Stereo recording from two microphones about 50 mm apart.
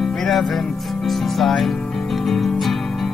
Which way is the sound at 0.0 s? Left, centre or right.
Centre.